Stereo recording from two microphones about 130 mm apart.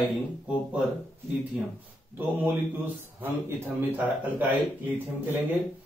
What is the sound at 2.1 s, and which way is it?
A man's voice, 15° right (ahead or behind).